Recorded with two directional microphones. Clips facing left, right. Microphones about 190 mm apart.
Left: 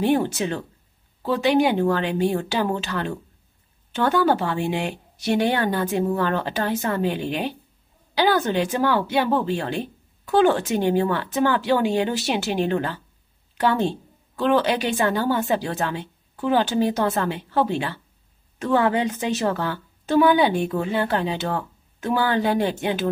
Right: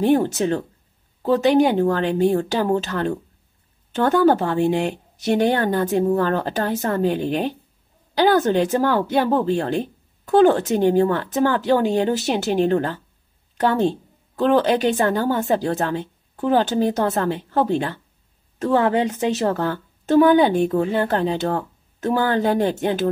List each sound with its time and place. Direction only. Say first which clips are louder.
0.0 s speech: right 3 dB; 45° right (ahead or behind)